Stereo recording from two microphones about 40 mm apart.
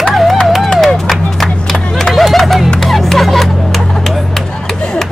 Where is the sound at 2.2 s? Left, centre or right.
Centre.